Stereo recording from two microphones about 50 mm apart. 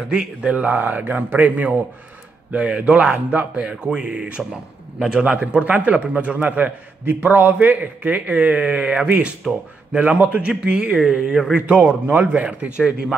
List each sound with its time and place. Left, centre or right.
0.1 s speech: centre
0.6 s speech: right
2.5 s a man's voice: right